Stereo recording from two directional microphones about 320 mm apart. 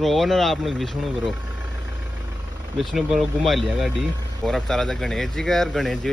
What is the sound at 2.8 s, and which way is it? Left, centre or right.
A man's voice, centre.